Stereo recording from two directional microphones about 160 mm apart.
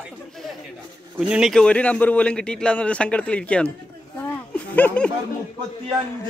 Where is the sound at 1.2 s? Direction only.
5° right (ahead or behind).